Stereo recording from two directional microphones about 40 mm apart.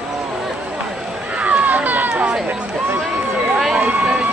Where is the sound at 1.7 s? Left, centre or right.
Right.